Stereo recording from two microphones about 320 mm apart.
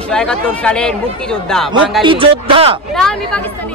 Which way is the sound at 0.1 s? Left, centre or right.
Centre.